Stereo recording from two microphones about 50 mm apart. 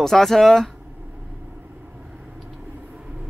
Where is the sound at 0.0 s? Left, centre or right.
Centre.